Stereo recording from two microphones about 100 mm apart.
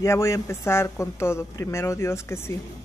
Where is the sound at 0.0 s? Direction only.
25° left (ahead or behind).